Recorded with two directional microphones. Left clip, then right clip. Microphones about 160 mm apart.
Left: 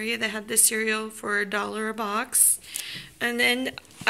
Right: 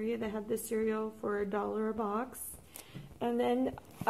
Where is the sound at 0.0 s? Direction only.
15° left (ahead or behind).